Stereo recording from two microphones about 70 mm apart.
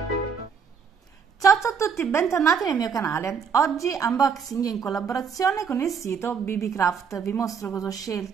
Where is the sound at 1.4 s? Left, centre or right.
Left.